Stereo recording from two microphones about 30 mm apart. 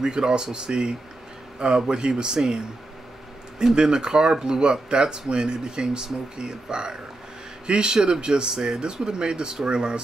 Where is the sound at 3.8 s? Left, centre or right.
Right.